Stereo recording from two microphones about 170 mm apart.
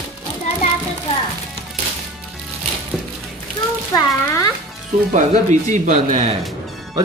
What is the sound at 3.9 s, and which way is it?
Speech, 20° left (ahead or behind).